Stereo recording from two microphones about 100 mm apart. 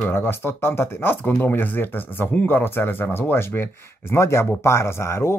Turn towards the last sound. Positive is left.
turn(degrees=30)  # may be behind; listen again after turning